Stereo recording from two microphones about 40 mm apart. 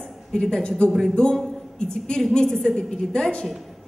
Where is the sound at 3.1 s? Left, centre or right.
Centre.